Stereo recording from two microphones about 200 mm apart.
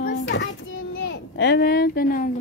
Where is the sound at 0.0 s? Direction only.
60° left (ahead or behind).